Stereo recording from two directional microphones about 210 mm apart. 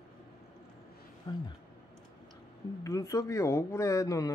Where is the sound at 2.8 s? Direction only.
15° left (ahead or behind).